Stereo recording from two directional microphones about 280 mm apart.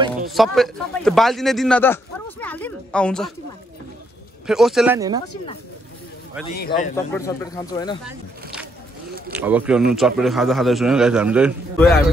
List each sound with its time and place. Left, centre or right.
0.3 s a man's voice: centre
4.5 s a man's voice: centre
6.6 s a man's voice: left
7.1 s speech: centre
9.3 s a man's voice: centre